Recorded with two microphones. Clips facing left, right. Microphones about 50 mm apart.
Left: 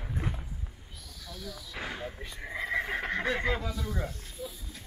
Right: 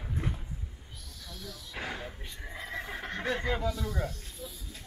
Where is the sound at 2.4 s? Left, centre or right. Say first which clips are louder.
Left 7 dB; centre.